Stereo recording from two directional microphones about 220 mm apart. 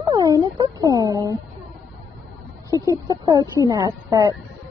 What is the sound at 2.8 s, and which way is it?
Speech, 15° right (ahead or behind).